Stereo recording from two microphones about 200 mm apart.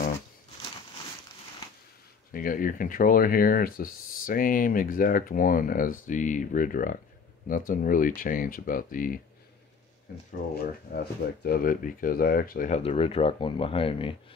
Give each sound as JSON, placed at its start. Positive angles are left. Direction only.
{"t": 2.3, "sound": "speech", "side_deg": 45}
{"t": 10.5, "sound": "speech", "side_deg": 50}